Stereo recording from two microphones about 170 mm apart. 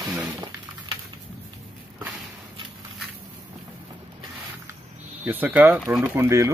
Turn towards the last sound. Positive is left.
turn(degrees=-15)  # may be behind; listen again after turning